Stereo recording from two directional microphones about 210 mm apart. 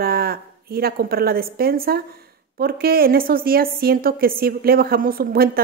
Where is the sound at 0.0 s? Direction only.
45° right (ahead or behind).